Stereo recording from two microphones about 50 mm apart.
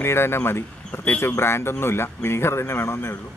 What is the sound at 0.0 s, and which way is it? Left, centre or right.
A man's voice, left.